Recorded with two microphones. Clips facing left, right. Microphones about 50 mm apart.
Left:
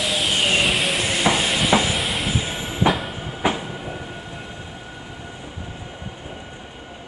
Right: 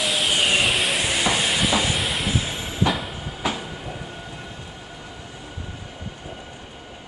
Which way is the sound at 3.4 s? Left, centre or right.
Left.